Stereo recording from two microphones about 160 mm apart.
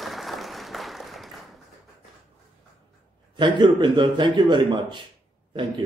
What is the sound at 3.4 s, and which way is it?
A man's voice, 30° right (ahead or behind).